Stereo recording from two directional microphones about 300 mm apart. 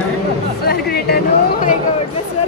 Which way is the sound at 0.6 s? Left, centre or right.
Left.